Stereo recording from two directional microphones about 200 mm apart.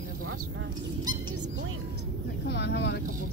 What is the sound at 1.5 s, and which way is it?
Music, 70° right (ahead or behind).